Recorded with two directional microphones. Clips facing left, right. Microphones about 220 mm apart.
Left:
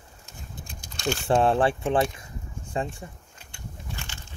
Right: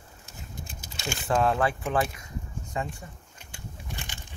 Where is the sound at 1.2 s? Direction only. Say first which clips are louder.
Left 3 dB; 30° left (ahead or behind).